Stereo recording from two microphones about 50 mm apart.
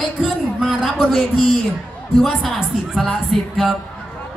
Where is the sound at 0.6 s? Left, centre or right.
Centre.